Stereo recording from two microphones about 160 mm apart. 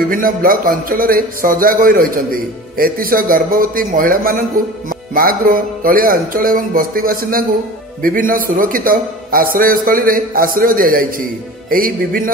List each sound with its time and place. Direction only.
0.1 s a man's voice: 60° right (ahead or behind)